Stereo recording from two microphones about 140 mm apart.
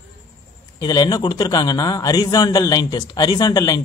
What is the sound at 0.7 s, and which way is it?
A man's voice, 25° left (ahead or behind).